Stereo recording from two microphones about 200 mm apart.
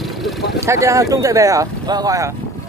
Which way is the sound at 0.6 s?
15° right (ahead or behind).